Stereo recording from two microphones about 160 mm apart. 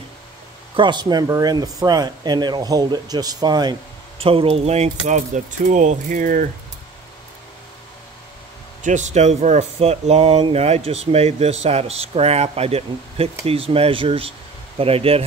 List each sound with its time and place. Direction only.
0.7 s speech: 30° right (ahead or behind)
4.2 s speech: 35° right (ahead or behind); by 6.5 s 60° right (ahead or behind)
8.8 s speech: 45° right (ahead or behind)